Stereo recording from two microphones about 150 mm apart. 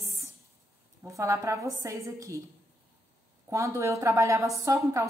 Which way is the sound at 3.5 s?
20° right (ahead or behind).